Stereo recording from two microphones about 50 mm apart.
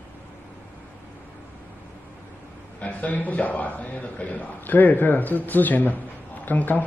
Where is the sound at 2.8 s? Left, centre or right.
Left.